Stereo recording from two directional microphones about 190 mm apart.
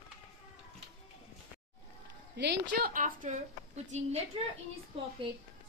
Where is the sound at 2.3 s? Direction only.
60° right (ahead or behind).